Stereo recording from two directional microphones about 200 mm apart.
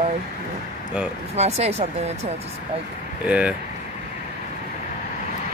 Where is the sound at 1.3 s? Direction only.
30° right (ahead or behind).